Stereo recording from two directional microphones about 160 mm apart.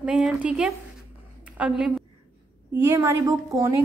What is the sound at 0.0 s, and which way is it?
Speech, 5° right (ahead or behind).